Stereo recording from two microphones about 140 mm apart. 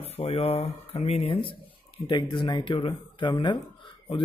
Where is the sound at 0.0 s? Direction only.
45° left (ahead or behind).